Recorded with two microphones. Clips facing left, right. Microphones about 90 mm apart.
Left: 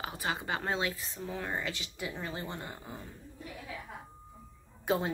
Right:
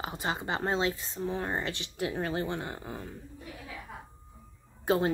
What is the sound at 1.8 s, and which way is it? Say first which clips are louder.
Speech: right 7 dB; 55° right (ahead or behind).